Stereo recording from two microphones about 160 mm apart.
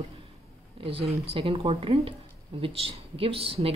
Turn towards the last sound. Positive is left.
turn(degrees=-35)  # may be behind; listen again after turning